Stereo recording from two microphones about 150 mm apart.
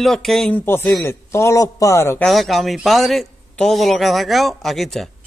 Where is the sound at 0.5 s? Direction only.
15° left (ahead or behind).